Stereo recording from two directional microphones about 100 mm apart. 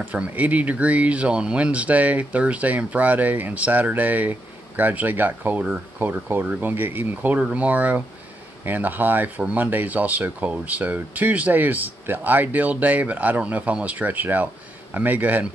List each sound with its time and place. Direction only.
0.0 s speech: 15° right (ahead or behind)